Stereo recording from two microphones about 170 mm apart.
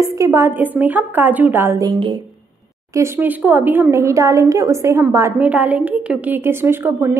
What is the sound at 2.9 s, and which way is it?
Speech, 15° right (ahead or behind).